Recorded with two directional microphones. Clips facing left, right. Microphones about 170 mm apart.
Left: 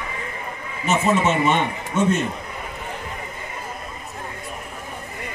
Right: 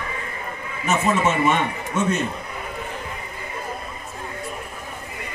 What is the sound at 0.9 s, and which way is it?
A man's voice, 25° left (ahead or behind).